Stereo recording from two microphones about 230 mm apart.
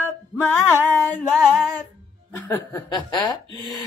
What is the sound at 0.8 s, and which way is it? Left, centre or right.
A man's voice, centre.